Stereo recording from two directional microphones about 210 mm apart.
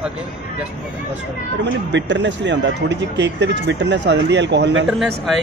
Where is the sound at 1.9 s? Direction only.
55° right (ahead or behind).